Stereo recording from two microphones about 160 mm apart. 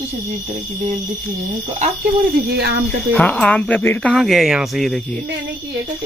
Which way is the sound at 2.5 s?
90° right.